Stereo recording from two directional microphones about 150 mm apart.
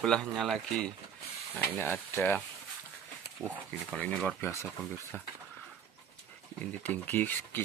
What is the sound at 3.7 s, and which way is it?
Speech, 5° left (ahead or behind).